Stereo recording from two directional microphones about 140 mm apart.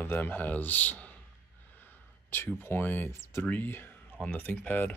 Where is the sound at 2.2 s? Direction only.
15° left (ahead or behind).